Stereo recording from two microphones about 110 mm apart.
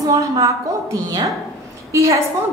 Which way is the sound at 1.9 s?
25° right (ahead or behind).